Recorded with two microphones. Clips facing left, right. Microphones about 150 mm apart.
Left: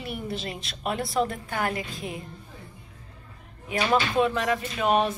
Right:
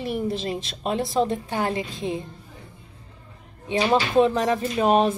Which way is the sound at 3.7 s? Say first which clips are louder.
Right 4 dB; 25° right (ahead or behind).